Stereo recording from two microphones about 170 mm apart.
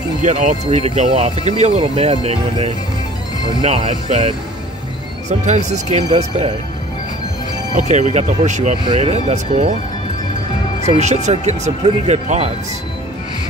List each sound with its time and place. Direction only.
0.2 s speech: 45° right (ahead or behind)
5.4 s speech: 45° right (ahead or behind)
7.7 s speech: 45° right (ahead or behind)
10.9 s speech: 40° right (ahead or behind)